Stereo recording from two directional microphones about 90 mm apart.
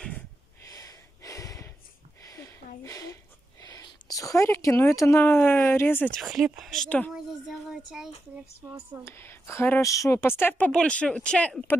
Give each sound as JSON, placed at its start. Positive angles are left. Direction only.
{"t": 0.7, "sound": "a sound", "side_deg": 40}
{"t": 3.6, "sound": "speech", "side_deg": 40}
{"t": 6.1, "sound": "speech", "side_deg": 0}
{"t": 7.4, "sound": "a sound", "side_deg": -5}
{"t": 9.0, "sound": "speech", "side_deg": 25}
{"t": 10.7, "sound": "speech", "side_deg": 10}